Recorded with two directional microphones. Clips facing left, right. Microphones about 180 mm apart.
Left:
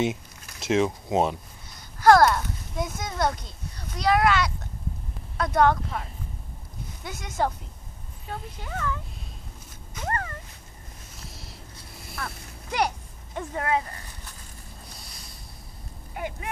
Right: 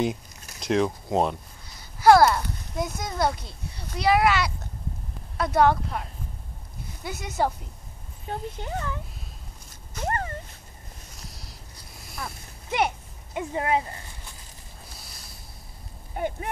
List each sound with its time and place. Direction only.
0.0 s speech: centre (ahead or behind)
8.3 s speech: 30° right (ahead or behind)
10.0 s a sound: 25° right (ahead or behind)
11.1 s a sound: centre (ahead or behind)
13.6 s speech: 25° right (ahead or behind)
15.0 s boat: centre (ahead or behind)